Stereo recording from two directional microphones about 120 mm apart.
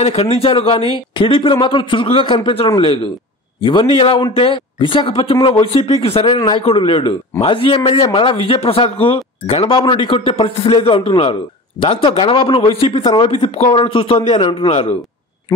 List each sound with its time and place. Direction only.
0.0 s speech: 60° left (ahead or behind)
6.3 s a man's voice: 40° left (ahead or behind)
6.6 s speech: 50° left (ahead or behind)
13.3 s speech: 65° left (ahead or behind)
13.7 s speech: 50° left (ahead or behind)